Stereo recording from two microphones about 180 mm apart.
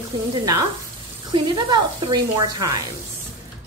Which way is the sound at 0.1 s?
25° right (ahead or behind).